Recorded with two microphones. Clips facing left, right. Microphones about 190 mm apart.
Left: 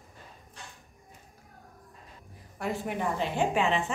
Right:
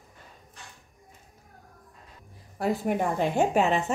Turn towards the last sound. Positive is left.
turn(degrees=-45)  # may be behind; listen again after turning